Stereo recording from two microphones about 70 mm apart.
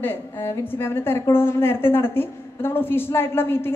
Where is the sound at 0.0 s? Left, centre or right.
Left.